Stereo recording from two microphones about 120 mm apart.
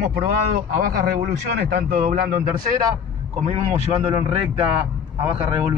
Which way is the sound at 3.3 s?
65° right (ahead or behind).